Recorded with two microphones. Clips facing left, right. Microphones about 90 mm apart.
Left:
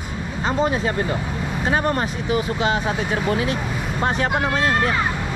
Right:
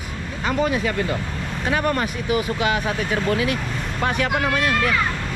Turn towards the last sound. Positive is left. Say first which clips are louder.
# left 1 dB
turn(degrees=25)  # may be behind; listen again after turning